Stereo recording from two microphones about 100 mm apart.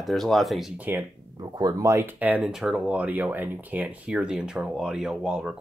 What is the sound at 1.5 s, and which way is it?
Speech, 40° right (ahead or behind).